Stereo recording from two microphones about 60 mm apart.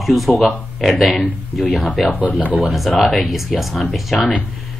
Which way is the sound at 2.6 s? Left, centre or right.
Centre.